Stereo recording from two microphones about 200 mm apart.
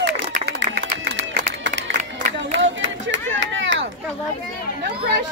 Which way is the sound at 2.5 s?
65° right (ahead or behind).